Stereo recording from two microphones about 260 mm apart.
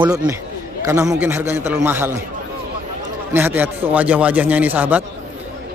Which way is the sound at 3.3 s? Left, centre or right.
Centre.